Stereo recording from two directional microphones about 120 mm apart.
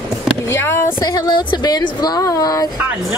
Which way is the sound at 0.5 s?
20° left (ahead or behind).